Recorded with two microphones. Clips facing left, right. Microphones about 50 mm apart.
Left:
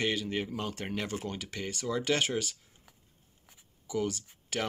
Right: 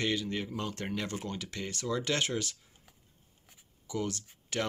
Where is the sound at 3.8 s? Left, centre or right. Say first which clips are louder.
Left 3 dB; left.